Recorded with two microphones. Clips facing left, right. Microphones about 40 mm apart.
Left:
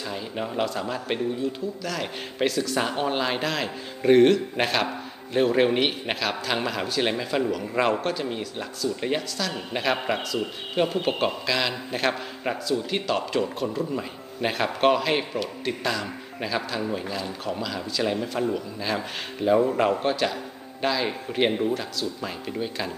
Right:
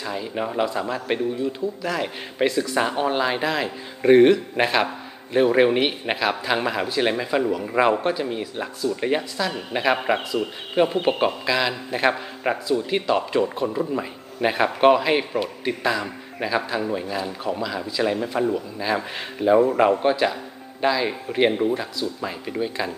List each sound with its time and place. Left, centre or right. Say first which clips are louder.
0.0 s a man's voice: right 4 dB; centre
1.8 s a man's voice: right 4 dB; centre
2.8 s a man's voice: right 4 dB; centre
7.5 s a man's voice: right 4 dB; centre